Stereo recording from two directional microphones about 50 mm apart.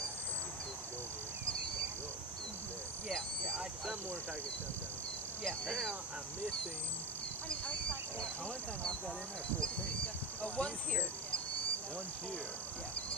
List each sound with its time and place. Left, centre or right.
3.1 s owl: centre
5.7 s speech: centre
10.4 s speech: left